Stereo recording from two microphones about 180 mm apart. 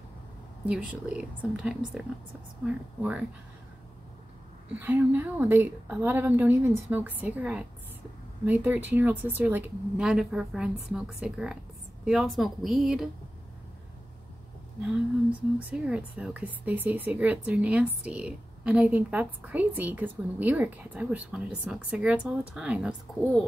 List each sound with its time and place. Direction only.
0.7 s a woman's voice: 5° right (ahead or behind)
4.7 s a woman's voice: 10° right (ahead or behind)
14.8 s speech: 5° right (ahead or behind)